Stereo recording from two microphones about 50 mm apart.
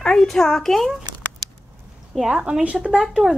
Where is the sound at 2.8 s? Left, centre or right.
Centre.